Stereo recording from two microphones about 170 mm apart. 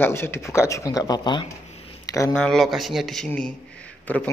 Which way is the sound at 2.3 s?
5° left (ahead or behind).